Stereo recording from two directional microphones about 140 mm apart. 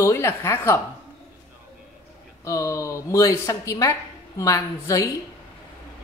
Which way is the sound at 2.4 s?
20° left (ahead or behind).